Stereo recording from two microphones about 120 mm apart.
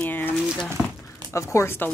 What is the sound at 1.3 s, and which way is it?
Speech, 25° left (ahead or behind).